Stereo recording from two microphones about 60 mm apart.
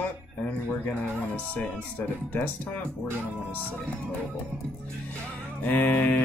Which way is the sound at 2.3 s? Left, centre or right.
Left.